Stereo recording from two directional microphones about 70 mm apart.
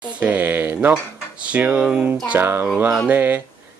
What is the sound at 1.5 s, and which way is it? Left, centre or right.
Speech, right.